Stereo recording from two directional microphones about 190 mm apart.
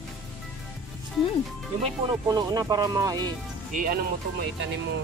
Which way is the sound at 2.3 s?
20° right (ahead or behind).